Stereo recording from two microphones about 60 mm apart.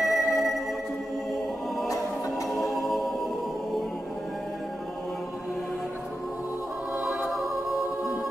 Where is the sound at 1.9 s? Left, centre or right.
Left.